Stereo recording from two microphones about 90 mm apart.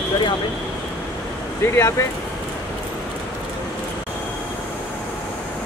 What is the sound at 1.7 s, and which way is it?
Speech, 30° left (ahead or behind).